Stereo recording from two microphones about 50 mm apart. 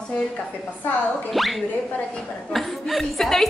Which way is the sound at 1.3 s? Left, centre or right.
Centre.